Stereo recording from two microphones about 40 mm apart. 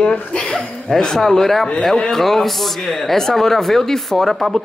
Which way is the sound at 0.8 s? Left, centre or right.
Centre.